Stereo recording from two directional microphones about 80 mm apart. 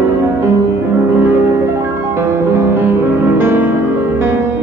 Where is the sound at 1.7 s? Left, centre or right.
Right.